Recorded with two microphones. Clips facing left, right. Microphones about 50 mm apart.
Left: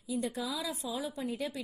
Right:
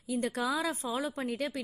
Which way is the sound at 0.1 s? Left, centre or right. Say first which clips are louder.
Right 4 dB; right.